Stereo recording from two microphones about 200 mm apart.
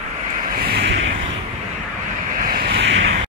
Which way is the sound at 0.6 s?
55° right (ahead or behind).